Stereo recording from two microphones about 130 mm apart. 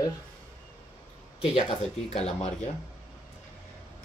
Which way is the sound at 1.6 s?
50° left (ahead or behind).